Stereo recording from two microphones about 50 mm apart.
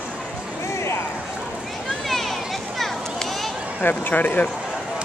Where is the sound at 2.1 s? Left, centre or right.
Centre.